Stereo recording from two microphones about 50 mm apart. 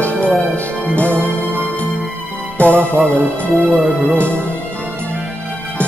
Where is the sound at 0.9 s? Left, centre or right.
Left.